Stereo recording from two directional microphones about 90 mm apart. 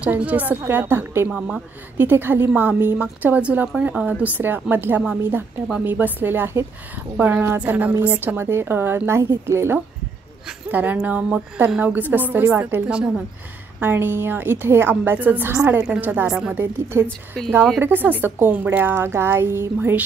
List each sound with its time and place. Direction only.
0.0 s a woman's voice: 15° right (ahead or behind)
13.7 s a woman's voice: 25° right (ahead or behind)
16.3 s speech: 10° right (ahead or behind)
16.5 s a woman's voice: 25° right (ahead or behind)